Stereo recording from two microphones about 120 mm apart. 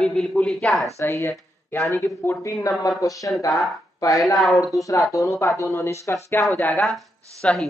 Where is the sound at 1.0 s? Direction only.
25° left (ahead or behind).